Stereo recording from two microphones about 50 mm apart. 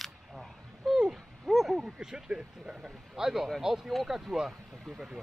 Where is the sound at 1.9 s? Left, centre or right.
Centre.